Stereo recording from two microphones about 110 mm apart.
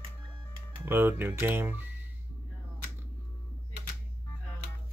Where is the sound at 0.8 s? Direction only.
20° right (ahead or behind).